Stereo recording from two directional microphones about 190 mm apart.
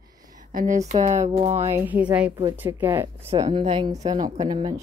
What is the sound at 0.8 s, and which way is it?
Speech, 35° right (ahead or behind).